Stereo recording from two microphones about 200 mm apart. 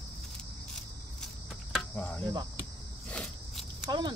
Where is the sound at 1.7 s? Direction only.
10° left (ahead or behind).